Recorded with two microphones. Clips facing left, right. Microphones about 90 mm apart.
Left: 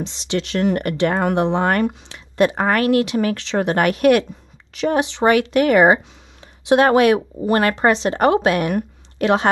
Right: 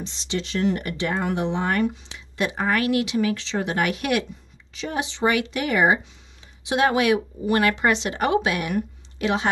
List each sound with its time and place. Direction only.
0.0 s speech: 70° left (ahead or behind); by 9.5 s 55° left (ahead or behind)